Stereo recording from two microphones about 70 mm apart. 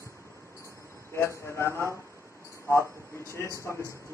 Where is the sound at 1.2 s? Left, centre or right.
Left.